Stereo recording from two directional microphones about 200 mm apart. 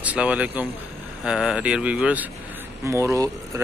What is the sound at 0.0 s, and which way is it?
Speech, 5° right (ahead or behind).